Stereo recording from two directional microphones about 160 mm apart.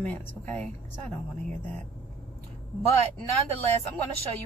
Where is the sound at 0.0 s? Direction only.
10° left (ahead or behind).